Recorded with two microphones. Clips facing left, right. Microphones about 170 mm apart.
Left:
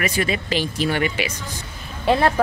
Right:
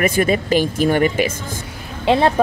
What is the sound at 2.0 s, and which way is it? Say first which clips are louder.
Speech: right 3 dB; 20° right (ahead or behind).